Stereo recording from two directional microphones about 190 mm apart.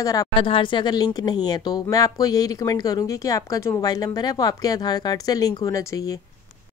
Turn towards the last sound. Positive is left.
turn(degrees=15)  # may be behind; listen again after turning